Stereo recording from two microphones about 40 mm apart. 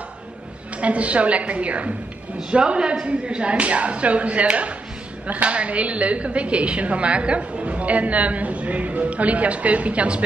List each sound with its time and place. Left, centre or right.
0.7 s a woman's voice: right